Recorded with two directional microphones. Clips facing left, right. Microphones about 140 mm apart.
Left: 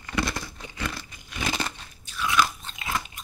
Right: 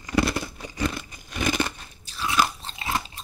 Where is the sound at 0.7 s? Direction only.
20° right (ahead or behind).